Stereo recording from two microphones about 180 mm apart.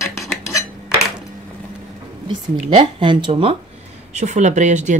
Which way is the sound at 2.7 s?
25° right (ahead or behind).